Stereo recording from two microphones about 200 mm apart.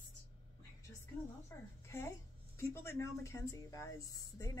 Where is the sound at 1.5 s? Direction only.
15° left (ahead or behind).